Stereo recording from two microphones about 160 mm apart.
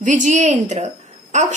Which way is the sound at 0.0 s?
50° right (ahead or behind).